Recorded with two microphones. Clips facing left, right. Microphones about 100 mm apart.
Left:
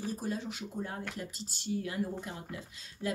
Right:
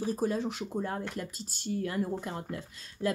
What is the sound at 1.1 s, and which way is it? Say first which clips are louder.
Speech: right 3 dB; 50° right (ahead or behind).